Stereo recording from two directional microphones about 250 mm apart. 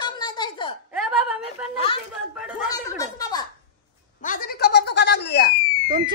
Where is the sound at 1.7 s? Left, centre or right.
Left.